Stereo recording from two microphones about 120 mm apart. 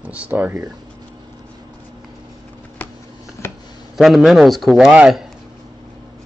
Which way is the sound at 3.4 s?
20° left (ahead or behind).